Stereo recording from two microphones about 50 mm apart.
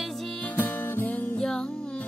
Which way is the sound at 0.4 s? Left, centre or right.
Left.